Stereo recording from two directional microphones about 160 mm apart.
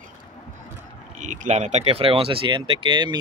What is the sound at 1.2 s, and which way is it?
Speech, 50° right (ahead or behind).